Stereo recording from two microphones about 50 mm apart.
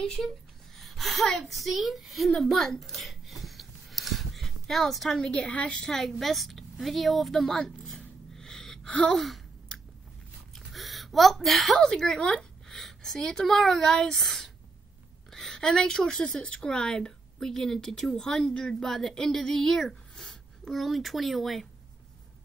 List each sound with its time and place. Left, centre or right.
0.0 s a woman's voice: centre
5.2 s a woman's voice: centre
5.8 s a woman's voice: centre
8.4 s gasp: centre
9.1 s a woman's voice: centre
10.5 s a sound: centre
11.9 s a woman's voice: centre
12.6 s a woman's voice: centre